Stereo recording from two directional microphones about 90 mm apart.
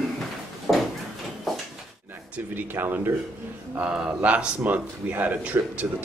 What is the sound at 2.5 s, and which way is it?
Speech, 20° right (ahead or behind).